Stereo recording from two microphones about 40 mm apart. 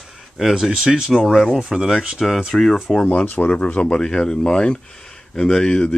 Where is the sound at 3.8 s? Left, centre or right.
Centre.